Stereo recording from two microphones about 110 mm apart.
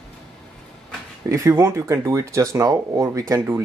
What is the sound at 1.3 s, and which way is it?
Speech, 25° right (ahead or behind).